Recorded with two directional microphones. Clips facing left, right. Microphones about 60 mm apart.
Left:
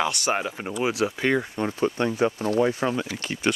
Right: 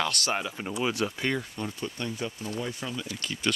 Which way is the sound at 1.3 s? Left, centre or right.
Left.